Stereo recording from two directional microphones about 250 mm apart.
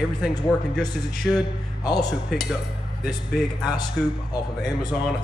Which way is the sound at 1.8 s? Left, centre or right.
Centre.